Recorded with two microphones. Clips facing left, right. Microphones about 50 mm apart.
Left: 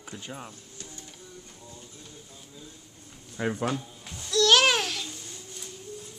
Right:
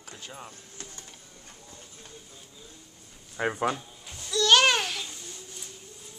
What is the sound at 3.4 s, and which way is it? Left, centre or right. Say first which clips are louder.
Speech: right 1 dB; centre.